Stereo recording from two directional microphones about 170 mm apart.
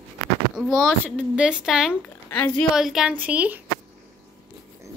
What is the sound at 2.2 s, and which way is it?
Speech, 10° left (ahead or behind).